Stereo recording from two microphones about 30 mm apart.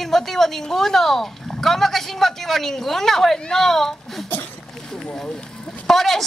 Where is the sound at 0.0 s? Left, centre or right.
Centre.